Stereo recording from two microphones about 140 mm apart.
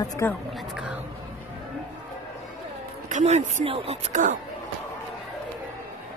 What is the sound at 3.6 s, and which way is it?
Speech, 45° right (ahead or behind).